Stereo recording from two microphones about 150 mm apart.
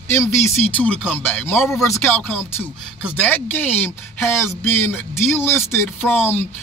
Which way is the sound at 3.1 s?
10° left (ahead or behind).